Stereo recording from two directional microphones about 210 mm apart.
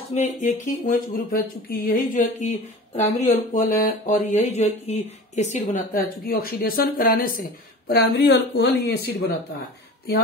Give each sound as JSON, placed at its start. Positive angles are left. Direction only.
{"t": 0.1, "sound": "speech", "side_deg": 35}